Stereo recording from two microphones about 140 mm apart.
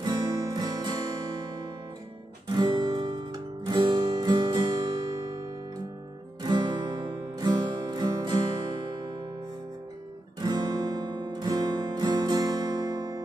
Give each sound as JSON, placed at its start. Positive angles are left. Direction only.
{"t": 0.0, "sound": "music", "side_deg": -30}
{"t": 2.4, "sound": "music", "side_deg": -30}
{"t": 6.4, "sound": "music", "side_deg": -30}
{"t": 10.4, "sound": "music", "side_deg": -30}